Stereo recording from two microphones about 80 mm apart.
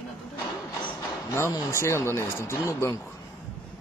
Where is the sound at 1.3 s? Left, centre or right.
Left.